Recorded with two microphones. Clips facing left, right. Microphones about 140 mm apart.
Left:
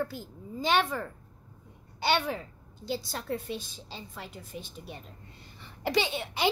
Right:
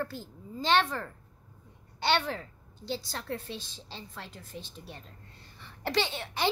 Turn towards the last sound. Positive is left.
turn(degrees=15)  # may be behind; listen again after turning